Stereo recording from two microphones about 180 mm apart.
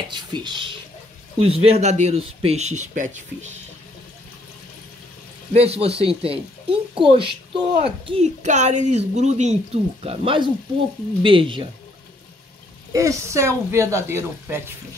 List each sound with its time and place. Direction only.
0.1 s speech: 25° right (ahead or behind); by 3.5 s 45° right (ahead or behind)
5.5 s speech: 35° right (ahead or behind)
12.9 s speech: 15° right (ahead or behind)